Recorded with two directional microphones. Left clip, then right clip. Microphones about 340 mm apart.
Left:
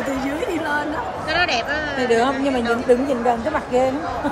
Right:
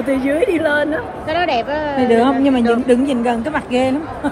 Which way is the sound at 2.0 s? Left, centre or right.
Centre.